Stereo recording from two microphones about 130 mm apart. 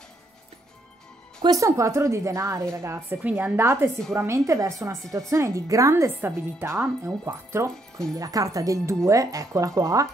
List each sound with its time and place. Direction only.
1.4 s speech: 30° right (ahead or behind)
8.2 s speech: 30° right (ahead or behind)